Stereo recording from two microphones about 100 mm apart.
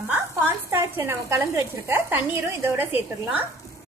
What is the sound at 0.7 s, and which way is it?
A woman's voice, 25° right (ahead or behind).